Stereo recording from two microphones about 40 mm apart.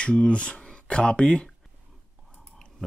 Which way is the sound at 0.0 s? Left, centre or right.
Left.